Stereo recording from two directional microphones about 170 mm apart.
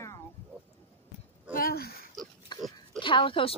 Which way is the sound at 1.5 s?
60° left (ahead or behind).